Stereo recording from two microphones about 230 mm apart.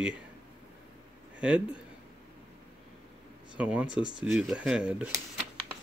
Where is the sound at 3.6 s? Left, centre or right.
Centre.